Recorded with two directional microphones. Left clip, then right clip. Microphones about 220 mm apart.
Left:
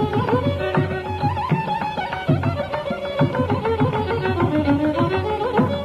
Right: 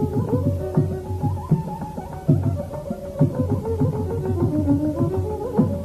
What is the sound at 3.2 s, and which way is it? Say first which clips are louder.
Music: left 3 dB; 35° left (ahead or behind).